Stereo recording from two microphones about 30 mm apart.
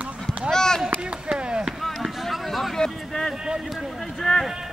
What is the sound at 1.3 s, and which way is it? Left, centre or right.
Chop, right.